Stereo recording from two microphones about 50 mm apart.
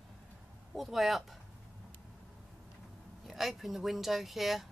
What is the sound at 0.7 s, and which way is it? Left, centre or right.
Speech, centre.